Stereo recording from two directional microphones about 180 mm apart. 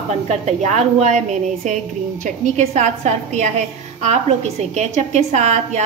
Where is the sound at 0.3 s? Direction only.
40° right (ahead or behind).